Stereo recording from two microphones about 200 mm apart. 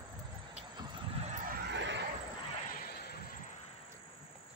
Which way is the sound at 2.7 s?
45° left (ahead or behind).